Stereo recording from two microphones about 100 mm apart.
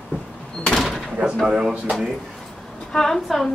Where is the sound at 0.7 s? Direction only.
5° left (ahead or behind).